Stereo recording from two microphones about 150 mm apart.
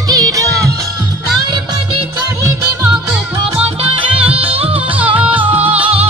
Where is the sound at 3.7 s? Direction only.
35° right (ahead or behind).